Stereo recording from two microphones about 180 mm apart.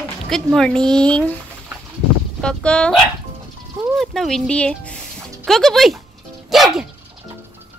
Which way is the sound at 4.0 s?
Centre (ahead or behind).